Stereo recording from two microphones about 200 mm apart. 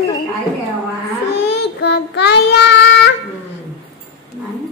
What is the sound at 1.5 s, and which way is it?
Child singing, 60° left (ahead or behind).